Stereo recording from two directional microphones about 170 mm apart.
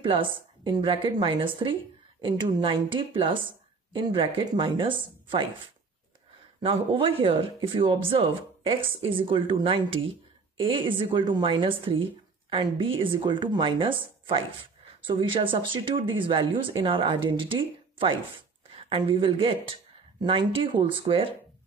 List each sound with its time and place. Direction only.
0.0 s speech: 30° right (ahead or behind)
6.6 s speech: 30° right (ahead or behind)